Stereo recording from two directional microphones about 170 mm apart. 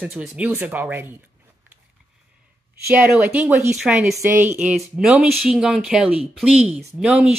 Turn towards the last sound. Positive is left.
turn(degrees=-5)  # may be behind; listen again after turning